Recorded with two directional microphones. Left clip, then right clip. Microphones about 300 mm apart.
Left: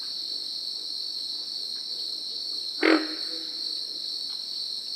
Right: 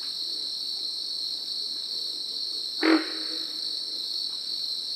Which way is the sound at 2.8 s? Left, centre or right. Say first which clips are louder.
Left 1 dB; left.